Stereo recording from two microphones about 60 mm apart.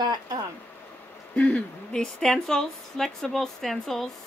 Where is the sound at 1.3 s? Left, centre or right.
Left.